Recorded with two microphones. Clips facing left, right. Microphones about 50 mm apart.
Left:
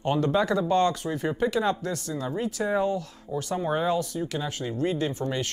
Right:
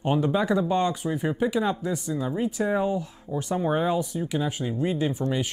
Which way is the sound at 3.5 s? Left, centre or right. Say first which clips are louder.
Right 1 dB; centre.